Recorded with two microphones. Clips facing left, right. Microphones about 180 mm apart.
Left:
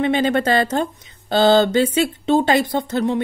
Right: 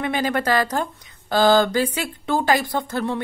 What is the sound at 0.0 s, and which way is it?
Speech, 25° left (ahead or behind).